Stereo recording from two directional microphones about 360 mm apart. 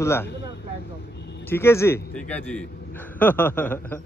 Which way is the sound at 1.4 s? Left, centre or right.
Centre.